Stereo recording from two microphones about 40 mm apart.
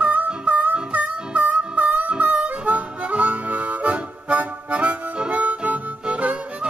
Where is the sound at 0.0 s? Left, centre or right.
Right.